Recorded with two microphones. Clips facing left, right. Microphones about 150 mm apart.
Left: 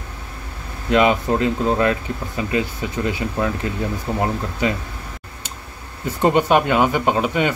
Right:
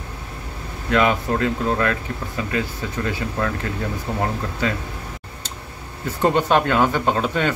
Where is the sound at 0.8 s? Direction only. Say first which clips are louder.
Left 3 dB; 20° left (ahead or behind).